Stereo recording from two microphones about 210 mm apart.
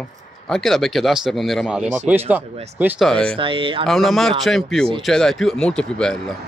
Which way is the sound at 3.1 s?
5° left (ahead or behind).